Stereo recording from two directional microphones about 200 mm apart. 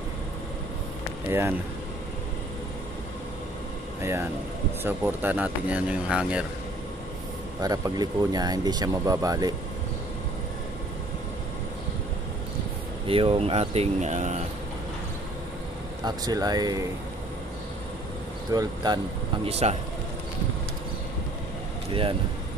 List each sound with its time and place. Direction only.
4.0 s speech: 15° right (ahead or behind)
7.6 s speech: 20° right (ahead or behind)
13.0 s speech: 25° right (ahead or behind)
16.1 s speech: 20° right (ahead or behind)
18.5 s speech: 20° right (ahead or behind)
19.4 s speech: 30° right (ahead or behind)